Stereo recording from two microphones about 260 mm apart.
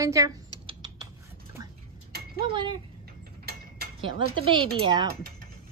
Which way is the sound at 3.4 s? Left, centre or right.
Right.